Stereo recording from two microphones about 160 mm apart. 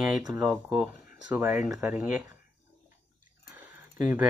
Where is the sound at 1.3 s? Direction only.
10° right (ahead or behind).